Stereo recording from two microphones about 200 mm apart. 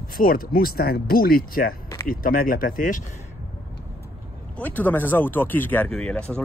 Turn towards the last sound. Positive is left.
turn(degrees=5)  # may be behind; listen again after turning